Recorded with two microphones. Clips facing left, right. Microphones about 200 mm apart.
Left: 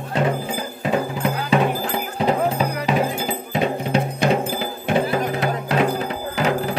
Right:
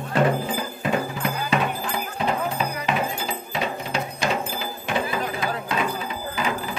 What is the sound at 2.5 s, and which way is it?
Music, 45° left (ahead or behind).